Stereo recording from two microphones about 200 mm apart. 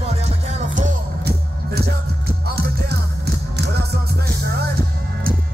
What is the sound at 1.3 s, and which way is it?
Music, 50° right (ahead or behind).